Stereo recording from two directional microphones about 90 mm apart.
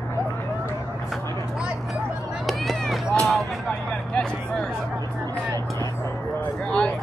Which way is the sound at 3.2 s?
Centre (ahead or behind).